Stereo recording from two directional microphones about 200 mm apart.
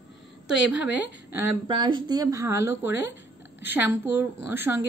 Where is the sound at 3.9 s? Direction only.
10° right (ahead or behind).